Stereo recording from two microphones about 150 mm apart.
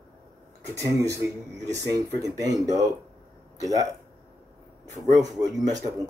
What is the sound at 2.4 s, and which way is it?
Speech, 25° right (ahead or behind).